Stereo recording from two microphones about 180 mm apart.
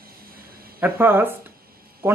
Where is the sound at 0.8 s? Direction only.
10° right (ahead or behind).